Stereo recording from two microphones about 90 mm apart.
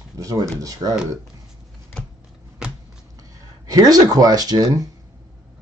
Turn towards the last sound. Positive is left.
turn(degrees=-40)  # may be behind; listen again after turning